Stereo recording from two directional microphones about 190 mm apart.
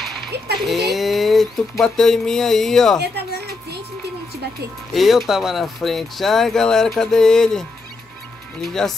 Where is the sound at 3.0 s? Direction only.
60° right (ahead or behind).